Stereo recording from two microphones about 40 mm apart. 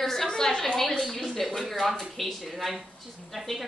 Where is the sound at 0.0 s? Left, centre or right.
Centre.